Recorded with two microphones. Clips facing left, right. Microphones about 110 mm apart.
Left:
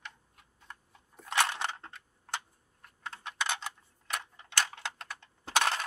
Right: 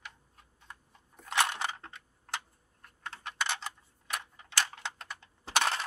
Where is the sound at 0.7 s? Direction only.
Centre (ahead or behind).